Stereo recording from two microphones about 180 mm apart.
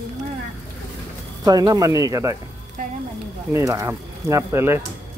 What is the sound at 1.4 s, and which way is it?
Speech, 20° right (ahead or behind).